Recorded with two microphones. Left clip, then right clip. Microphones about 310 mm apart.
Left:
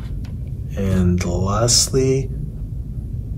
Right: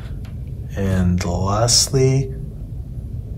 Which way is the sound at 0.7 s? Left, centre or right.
Centre.